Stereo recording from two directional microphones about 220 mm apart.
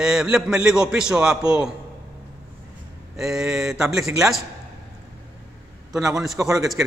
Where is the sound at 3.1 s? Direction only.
Centre (ahead or behind).